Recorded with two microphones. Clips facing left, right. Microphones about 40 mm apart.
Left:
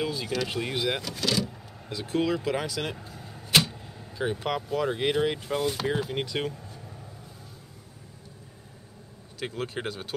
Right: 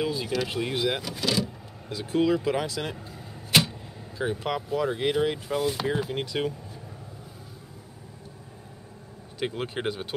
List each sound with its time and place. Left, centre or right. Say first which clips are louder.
0.0 s speech: right 2 dB; centre
3.1 s arrow: even; centre
4.5 s speech: right 1 dB; centre
9.4 s speech: right 3 dB; centre